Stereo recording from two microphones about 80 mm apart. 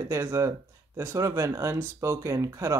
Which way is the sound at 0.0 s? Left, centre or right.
Right.